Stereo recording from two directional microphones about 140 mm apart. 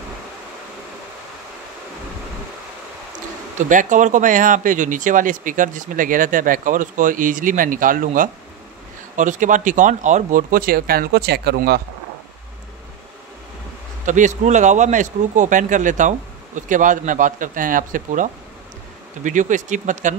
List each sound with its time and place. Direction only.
3.5 s speech: 65° right (ahead or behind); by 11.7 s 90° right
14.0 s speech: 60° right (ahead or behind)